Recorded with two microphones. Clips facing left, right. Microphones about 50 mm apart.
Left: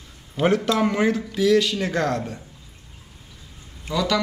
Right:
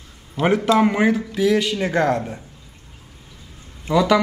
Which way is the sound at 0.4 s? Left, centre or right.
Centre.